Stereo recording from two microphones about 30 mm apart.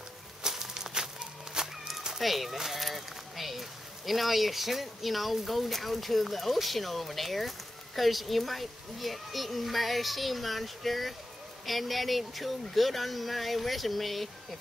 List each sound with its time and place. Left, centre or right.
0.4 s a sound: right
1.6 s horse: right
2.1 s speech: centre
2.5 s speech: centre
2.8 s speech: centre